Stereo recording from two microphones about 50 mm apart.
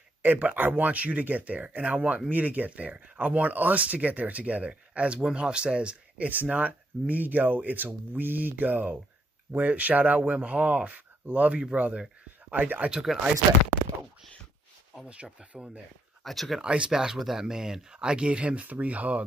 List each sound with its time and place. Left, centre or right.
0.4 s speech: right
12.9 s speech: centre
16.3 s speech: centre
16.6 s speech: centre